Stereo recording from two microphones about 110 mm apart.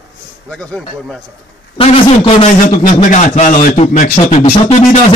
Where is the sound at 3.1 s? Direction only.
90° left.